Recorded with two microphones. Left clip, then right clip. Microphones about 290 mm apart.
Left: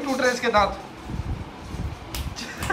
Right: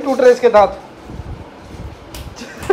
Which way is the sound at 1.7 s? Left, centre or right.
Centre.